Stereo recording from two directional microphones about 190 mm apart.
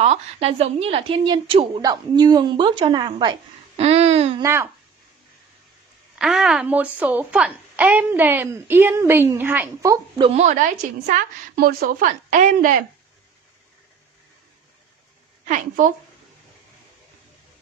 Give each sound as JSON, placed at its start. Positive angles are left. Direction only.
{"t": 0.0, "sound": "a woman's voice", "side_deg": -35}
{"t": 4.4, "sound": "a child's voice", "side_deg": -15}
{"t": 6.1, "sound": "a child's voice", "side_deg": 0}
{"t": 11.5, "sound": "speech", "side_deg": -50}
{"t": 15.4, "sound": "speech", "side_deg": -45}